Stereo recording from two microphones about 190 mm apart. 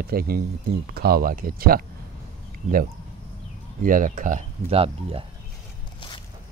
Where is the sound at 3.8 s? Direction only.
45° right (ahead or behind); by 5.2 s 30° right (ahead or behind).